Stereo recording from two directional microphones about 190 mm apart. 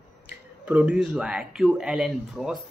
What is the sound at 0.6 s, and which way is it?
Speech, 5° right (ahead or behind).